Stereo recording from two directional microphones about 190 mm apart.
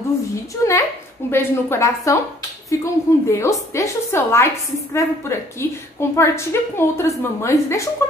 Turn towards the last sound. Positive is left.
turn(degrees=15)  # may be behind; listen again after turning